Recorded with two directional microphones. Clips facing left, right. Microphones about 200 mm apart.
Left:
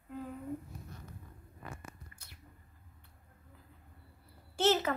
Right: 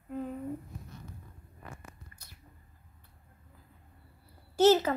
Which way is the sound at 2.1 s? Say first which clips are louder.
Right 1 dB; 35° right (ahead or behind).